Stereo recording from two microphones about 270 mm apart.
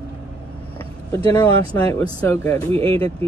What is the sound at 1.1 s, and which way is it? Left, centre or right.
Speech, centre.